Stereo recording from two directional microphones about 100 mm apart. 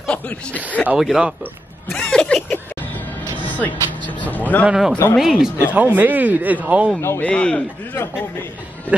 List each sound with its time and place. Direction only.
0.0 s speech: 10° left (ahead or behind)
0.9 s speech: 5° right (ahead or behind)
2.0 s a sound: 5° left (ahead or behind)
3.4 s speech: 15° left (ahead or behind)
4.6 s speech: 5° right (ahead or behind)
5.7 s speech: 15° right (ahead or behind)
7.0 s speech: 25° left (ahead or behind)
7.2 s speech: 10° left (ahead or behind)
7.9 s speech: 25° left (ahead or behind)